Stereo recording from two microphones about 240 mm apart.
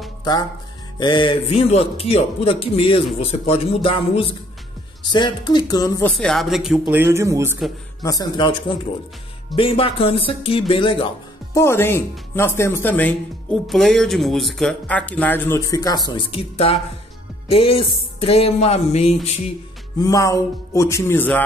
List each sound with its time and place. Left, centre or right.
0.2 s a man's voice: centre
6.1 s speech: centre
8.0 s a man's voice: centre
20.0 s speech: centre